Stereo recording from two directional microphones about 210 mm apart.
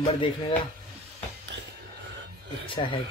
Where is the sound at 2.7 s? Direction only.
25° left (ahead or behind).